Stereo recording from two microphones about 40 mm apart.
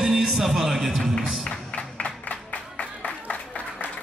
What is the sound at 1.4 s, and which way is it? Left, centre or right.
Music, left.